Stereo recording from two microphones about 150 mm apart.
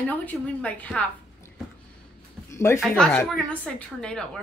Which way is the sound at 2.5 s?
15° left (ahead or behind).